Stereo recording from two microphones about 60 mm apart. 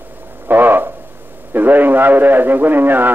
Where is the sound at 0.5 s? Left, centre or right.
Right.